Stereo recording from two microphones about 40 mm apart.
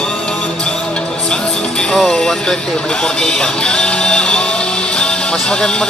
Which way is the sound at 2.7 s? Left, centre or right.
Left.